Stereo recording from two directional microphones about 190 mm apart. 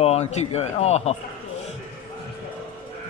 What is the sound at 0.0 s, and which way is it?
A man's voice, 35° left (ahead or behind).